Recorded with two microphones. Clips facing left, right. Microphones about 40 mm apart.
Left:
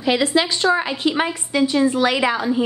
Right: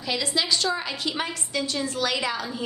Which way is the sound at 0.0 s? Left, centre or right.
Left.